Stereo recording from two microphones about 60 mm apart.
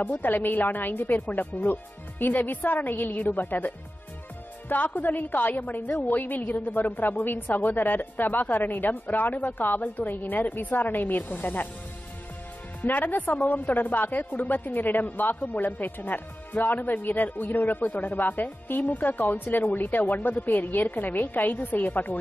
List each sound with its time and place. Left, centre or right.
0.0 s a woman's voice: left
12.8 s a woman's voice: left